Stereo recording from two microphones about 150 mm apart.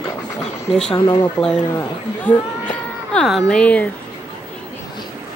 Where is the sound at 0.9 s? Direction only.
30° left (ahead or behind).